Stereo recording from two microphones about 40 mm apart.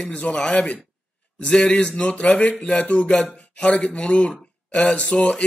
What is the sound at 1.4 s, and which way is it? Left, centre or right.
A man's voice, left.